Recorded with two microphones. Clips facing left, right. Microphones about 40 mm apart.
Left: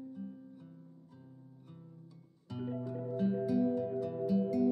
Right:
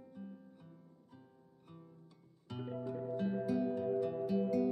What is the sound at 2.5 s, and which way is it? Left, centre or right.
Music, centre.